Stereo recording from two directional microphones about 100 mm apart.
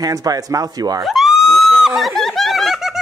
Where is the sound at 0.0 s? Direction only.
40° right (ahead or behind).